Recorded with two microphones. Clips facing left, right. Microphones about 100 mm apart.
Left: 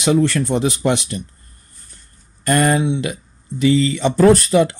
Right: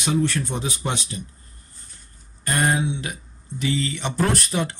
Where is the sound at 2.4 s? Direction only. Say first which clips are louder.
Left 6 dB; 85° left.